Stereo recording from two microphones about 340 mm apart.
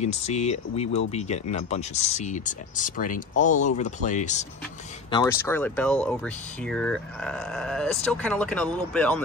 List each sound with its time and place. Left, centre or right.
0.0 s speech: centre
5.1 s speech: centre